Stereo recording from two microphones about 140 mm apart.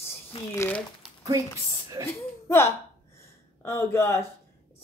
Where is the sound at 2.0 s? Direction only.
25° right (ahead or behind).